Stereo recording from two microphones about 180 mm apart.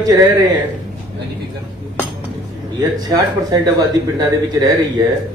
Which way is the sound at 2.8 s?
20° right (ahead or behind).